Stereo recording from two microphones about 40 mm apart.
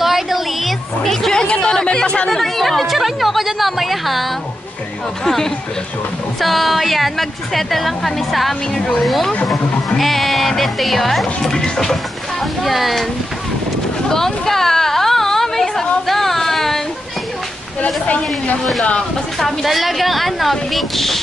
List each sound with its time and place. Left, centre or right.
0.0 s a sound: centre
1.3 s chatter: centre
2.2 s a sound: centre
5.2 s speech: centre
6.4 s a woman's voice: centre
12.6 s a woman's voice: centre
14.1 s a sound: centre
18.0 s speech: left
18.9 s a woman's voice: centre